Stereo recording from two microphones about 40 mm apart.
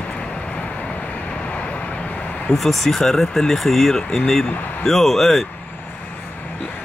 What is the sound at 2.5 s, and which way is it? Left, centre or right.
Speech, centre.